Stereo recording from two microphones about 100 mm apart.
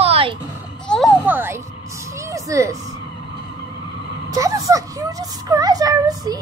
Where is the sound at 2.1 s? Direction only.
30° right (ahead or behind).